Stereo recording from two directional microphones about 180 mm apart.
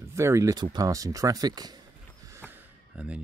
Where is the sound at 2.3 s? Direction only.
10° right (ahead or behind).